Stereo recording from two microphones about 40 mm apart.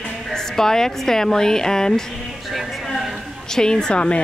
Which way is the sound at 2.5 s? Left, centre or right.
Centre.